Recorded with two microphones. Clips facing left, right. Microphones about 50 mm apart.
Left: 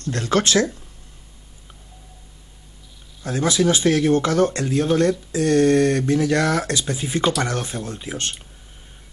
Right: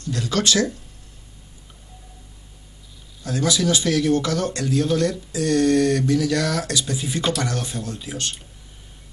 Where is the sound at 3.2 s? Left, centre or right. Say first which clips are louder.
Left 2 dB; left.